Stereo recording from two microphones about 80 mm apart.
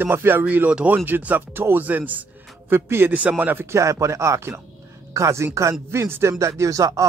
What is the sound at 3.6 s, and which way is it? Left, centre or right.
A man's voice, right.